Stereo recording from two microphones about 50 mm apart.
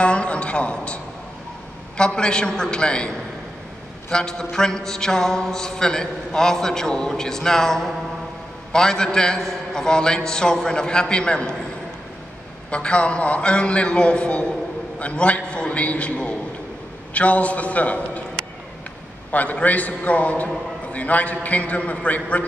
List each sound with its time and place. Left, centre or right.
0.0 s a man's voice: left
4.1 s a man's voice: centre
12.7 s a man's voice: left
19.3 s a man's voice: left